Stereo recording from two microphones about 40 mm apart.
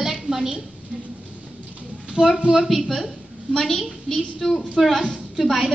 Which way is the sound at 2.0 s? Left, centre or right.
Right.